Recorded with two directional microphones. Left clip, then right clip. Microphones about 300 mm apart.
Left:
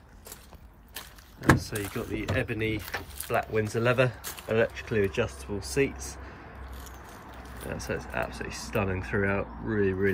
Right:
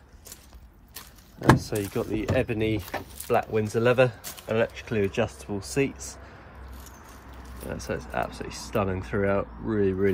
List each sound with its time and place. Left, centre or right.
1.5 s speech: centre
5.4 s speech: centre
7.7 s speech: centre